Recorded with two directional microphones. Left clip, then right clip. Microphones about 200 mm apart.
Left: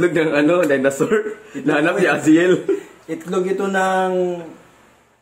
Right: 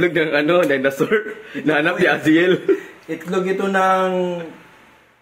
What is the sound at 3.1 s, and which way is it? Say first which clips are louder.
Speech: even; 20° left (ahead or behind).